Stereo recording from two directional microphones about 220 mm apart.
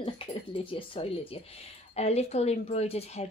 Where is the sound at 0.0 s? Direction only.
25° left (ahead or behind).